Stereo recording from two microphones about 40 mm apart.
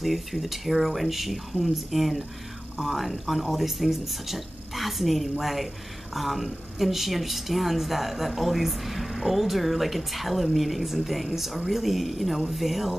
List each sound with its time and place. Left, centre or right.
0.0 s speech: centre